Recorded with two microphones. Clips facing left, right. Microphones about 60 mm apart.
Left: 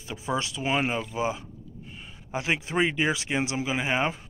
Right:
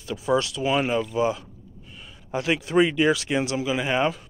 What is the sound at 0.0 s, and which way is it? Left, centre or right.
Speech, left.